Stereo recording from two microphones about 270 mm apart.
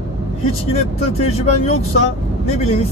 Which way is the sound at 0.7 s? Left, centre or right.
Left.